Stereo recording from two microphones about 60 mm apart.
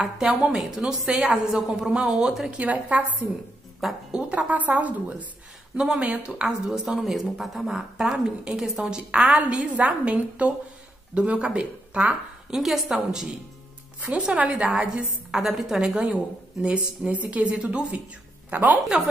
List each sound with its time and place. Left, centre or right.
0.0 s a woman's voice: centre
2.5 s a woman's voice: right
3.8 s a woman's voice: centre
4.5 s a woman's voice: right
5.8 s a woman's voice: centre
6.4 s a woman's voice: centre
9.4 s a woman's voice: right
15.3 s a woman's voice: centre; by 18.8 s right